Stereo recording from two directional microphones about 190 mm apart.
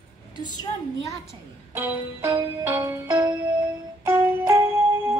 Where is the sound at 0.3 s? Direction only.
20° left (ahead or behind).